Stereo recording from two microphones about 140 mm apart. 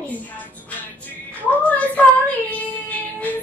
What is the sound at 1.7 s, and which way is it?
Speech, 10° left (ahead or behind).